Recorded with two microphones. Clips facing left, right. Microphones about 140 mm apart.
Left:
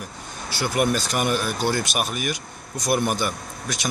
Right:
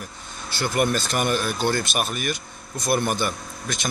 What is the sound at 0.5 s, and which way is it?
Speech, 10° left (ahead or behind).